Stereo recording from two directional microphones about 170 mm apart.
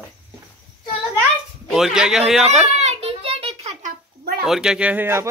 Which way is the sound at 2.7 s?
40° right (ahead or behind).